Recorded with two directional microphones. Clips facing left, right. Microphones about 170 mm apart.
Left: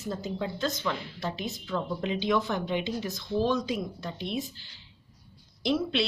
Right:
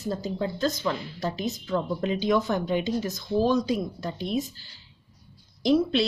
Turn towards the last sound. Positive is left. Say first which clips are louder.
# right 6 dB
turn(degrees=-40)  # may be behind; listen again after turning